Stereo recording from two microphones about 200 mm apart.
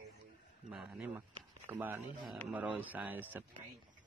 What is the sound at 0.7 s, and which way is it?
Speech, 5° right (ahead or behind).